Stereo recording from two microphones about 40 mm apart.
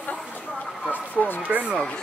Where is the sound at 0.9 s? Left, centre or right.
Left.